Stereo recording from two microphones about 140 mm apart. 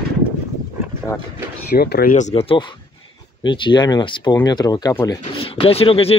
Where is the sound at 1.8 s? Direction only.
90° left; by 2.4 s 60° left (ahead or behind).